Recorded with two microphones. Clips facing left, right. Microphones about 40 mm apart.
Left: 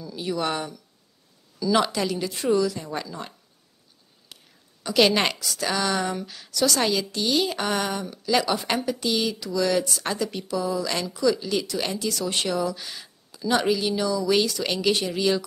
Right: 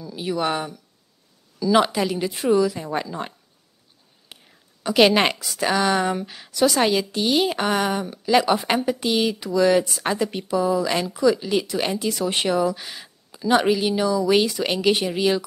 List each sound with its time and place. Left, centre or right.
0.0 s speech: centre
4.3 s whispering: right
4.8 s a woman's voice: right